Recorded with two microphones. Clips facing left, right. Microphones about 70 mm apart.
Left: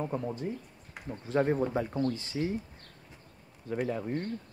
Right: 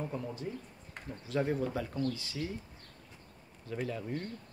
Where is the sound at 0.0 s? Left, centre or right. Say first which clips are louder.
Left 5 dB; left.